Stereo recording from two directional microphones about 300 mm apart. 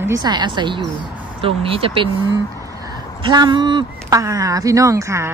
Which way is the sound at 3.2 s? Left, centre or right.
Centre.